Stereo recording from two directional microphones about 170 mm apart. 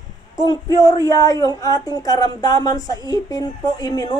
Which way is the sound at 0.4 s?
20° left (ahead or behind).